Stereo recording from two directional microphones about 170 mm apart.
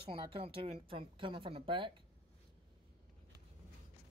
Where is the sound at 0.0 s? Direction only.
30° right (ahead or behind).